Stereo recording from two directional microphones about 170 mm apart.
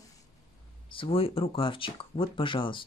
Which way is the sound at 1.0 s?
35° left (ahead or behind).